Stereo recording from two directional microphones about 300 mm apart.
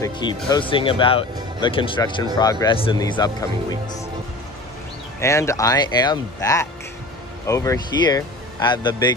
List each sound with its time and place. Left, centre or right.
0.0 s speech: centre
5.2 s speech: centre